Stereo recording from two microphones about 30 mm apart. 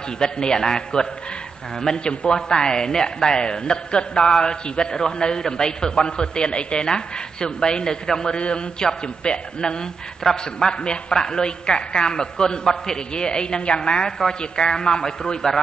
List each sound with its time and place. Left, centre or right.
0.2 s a man's voice: left